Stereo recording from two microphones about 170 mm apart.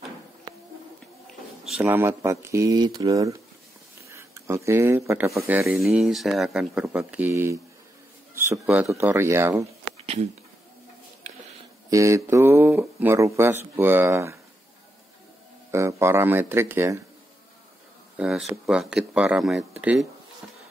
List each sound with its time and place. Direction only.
1.7 s speech: 10° right (ahead or behind)
5.8 s speech: centre (ahead or behind)
11.9 s speech: 15° right (ahead or behind)
15.7 s speech: 15° right (ahead or behind)
18.1 s speech: 5° right (ahead or behind)